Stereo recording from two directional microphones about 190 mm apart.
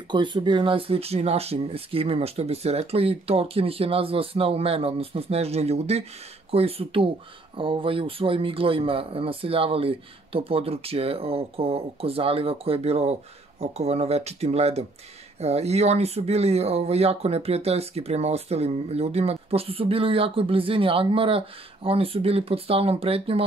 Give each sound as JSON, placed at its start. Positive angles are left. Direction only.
{"t": 0.1, "sound": "speech", "side_deg": -25}